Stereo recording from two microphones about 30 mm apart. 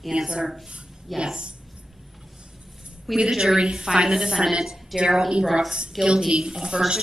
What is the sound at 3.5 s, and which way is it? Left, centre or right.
A woman's voice, right.